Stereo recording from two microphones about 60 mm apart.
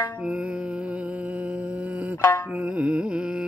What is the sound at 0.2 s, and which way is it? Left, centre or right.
Music, centre.